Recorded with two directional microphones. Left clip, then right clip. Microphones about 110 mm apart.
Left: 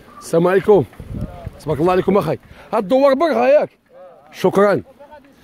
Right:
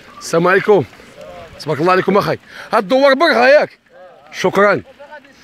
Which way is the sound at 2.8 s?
25° left (ahead or behind).